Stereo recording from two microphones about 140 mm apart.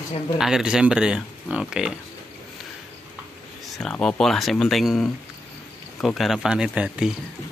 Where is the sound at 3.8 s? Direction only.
5° left (ahead or behind).